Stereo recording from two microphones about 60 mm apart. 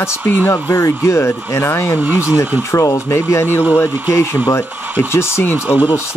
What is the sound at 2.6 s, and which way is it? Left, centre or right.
Speech, left.